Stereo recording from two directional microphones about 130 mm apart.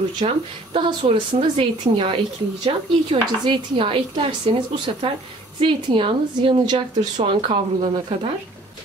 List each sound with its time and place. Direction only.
0.2 s a woman's voice: 40° right (ahead or behind)